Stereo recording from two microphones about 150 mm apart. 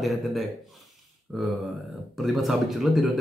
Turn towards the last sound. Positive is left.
turn(degrees=0)  # may be behind; listen again after turning